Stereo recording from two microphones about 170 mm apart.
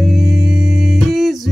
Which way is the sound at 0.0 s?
Centre (ahead or behind).